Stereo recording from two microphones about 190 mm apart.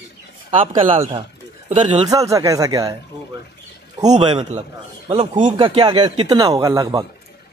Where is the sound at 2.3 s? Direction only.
15° right (ahead or behind).